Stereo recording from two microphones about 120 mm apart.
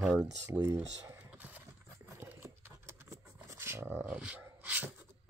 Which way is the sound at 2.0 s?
20° right (ahead or behind).